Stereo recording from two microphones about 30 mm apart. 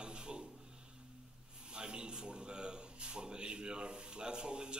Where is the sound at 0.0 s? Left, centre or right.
Right.